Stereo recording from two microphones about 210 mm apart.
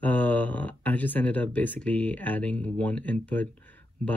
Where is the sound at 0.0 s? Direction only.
5° left (ahead or behind).